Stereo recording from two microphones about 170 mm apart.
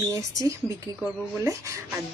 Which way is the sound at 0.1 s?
20° right (ahead or behind).